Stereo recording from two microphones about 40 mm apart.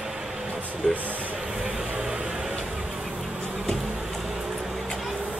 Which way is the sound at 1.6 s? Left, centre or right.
Right.